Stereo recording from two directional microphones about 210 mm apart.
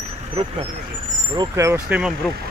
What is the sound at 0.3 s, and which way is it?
Speech, 25° right (ahead or behind).